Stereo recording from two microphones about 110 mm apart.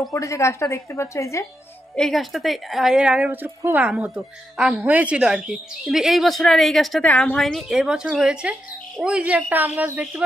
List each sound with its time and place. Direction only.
0.1 s a woman's voice: 30° left (ahead or behind)
2.0 s speech: centre (ahead or behind)
7.1 s a woman's voice: 15° left (ahead or behind)
7.3 s speech: 5° left (ahead or behind); by 10.2 s 15° right (ahead or behind)